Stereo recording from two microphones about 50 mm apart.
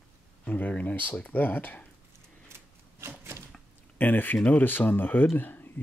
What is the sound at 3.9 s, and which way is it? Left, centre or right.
Speech, left.